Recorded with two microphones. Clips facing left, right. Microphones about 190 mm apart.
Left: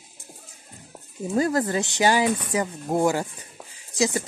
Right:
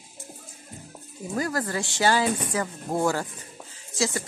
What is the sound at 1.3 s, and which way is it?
Speech, 25° left (ahead or behind).